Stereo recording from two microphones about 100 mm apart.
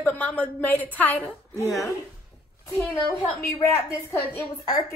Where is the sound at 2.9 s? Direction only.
25° left (ahead or behind).